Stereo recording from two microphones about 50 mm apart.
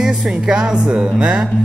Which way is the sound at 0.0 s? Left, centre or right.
Centre.